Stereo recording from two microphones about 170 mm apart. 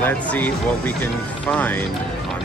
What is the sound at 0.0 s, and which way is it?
Speech, 10° left (ahead or behind).